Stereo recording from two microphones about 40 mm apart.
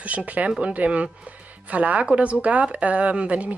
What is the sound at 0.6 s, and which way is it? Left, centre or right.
A woman's voice, right.